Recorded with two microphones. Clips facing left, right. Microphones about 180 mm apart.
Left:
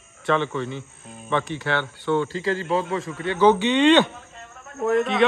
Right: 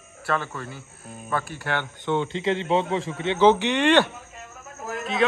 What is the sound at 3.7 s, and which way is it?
Speech, 10° right (ahead or behind).